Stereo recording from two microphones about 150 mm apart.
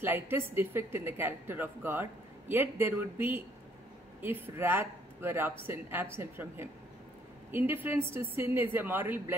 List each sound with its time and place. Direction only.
0.0 s speech: 15° right (ahead or behind)